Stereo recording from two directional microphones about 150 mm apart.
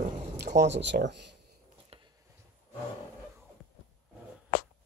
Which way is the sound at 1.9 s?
40° right (ahead or behind).